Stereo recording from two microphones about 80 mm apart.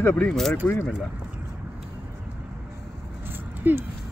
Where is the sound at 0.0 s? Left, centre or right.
Left.